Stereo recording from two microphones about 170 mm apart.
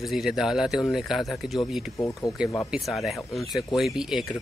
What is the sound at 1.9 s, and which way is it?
Speech, 20° left (ahead or behind).